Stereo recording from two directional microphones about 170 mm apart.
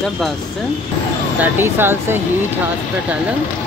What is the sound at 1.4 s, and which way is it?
Speech, 10° right (ahead or behind).